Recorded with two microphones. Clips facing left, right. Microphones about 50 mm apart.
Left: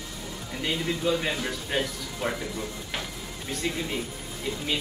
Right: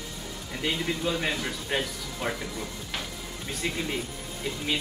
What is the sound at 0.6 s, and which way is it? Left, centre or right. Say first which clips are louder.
Speech: left 1 dB; centre.